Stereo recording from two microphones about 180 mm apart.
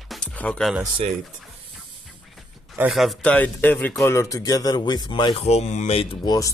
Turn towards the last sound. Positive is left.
turn(degrees=20)  # may be behind; listen again after turning